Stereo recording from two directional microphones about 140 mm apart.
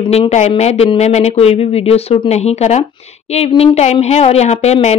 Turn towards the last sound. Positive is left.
turn(degrees=50)  # may be behind; listen again after turning